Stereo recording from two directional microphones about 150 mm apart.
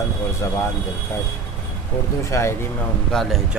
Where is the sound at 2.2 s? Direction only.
20° left (ahead or behind).